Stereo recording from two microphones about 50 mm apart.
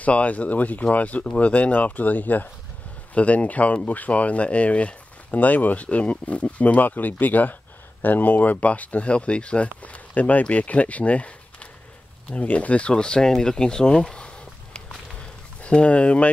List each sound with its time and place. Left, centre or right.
0.0 s speech: left